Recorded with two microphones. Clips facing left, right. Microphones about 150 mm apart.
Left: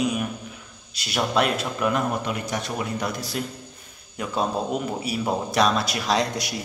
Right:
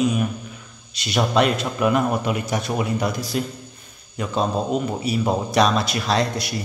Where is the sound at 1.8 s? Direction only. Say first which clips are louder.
Right 5 dB; 5° right (ahead or behind).